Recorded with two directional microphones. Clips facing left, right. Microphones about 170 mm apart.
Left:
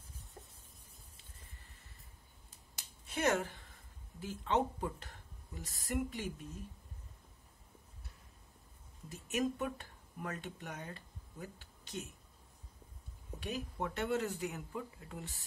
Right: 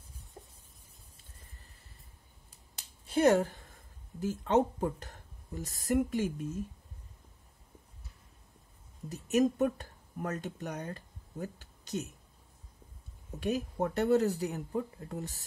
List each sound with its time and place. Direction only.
0.4 s a sound: 20° right (ahead or behind)
3.1 s speech: 35° right (ahead or behind)
9.1 s speech: 40° right (ahead or behind)
13.4 s speech: 45° right (ahead or behind)